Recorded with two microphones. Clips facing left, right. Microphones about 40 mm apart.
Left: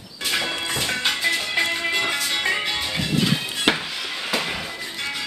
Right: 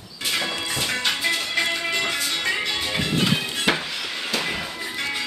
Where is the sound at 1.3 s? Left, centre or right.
Left; by 2.8 s centre.